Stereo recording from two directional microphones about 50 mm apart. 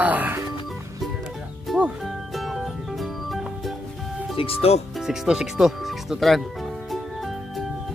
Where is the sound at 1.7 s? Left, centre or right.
Centre.